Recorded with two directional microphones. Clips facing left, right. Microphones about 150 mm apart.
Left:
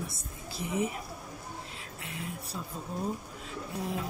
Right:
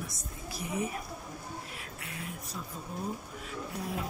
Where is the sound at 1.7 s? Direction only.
25° left (ahead or behind).